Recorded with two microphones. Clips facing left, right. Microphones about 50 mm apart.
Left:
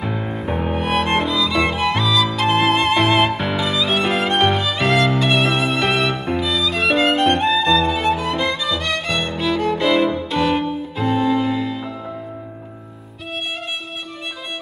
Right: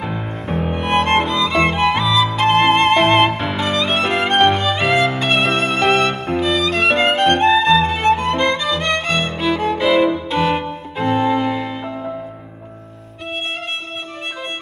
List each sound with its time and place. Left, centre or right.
0.0 s music: centre
11.6 s music: right